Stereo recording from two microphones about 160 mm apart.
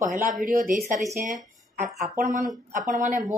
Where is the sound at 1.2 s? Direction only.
50° right (ahead or behind).